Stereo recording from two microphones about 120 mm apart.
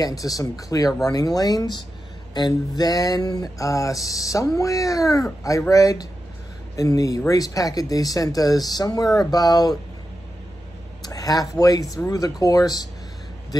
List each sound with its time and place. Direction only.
0.0 s speech: 30° left (ahead or behind)
2.3 s a sound: 35° left (ahead or behind)
6.8 s speech: 30° left (ahead or behind)
11.0 s speech: 30° left (ahead or behind)